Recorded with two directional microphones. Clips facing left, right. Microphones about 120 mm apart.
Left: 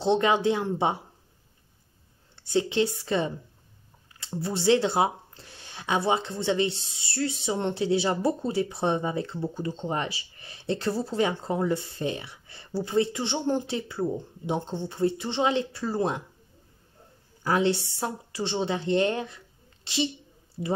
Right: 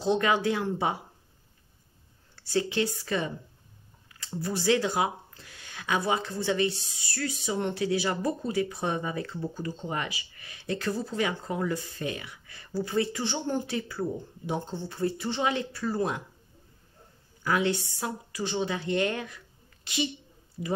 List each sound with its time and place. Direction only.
0.0 s speech: 25° left (ahead or behind)
2.3 s speech: 25° left (ahead or behind)
17.4 s a woman's voice: 30° left (ahead or behind)